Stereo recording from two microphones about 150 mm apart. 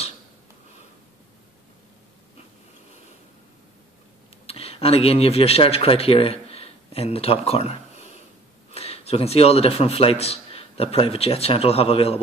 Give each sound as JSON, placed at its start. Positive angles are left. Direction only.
{"t": 4.5, "sound": "a man's voice", "side_deg": 40}